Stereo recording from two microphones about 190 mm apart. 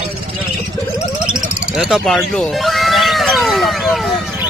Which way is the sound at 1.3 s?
Centre (ahead or behind).